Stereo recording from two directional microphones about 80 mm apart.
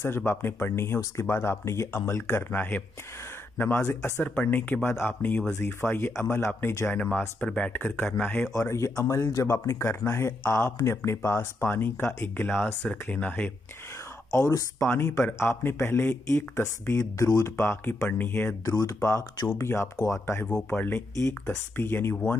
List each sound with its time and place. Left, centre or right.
0.0 s speech: left
7.0 s speech: centre
8.5 s speech: left; by 13.5 s centre
14.3 s speech: left
17.6 s speech: left
18.7 s speech: left
20.4 s speech: left